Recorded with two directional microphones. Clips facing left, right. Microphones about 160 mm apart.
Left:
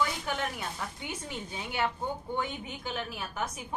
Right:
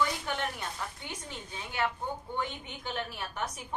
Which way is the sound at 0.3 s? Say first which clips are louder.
Left 1 dB; 5° left (ahead or behind).